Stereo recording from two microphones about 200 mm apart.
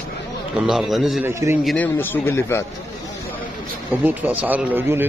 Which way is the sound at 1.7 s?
10° left (ahead or behind).